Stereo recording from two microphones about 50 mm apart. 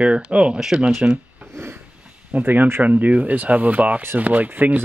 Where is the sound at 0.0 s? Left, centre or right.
Right.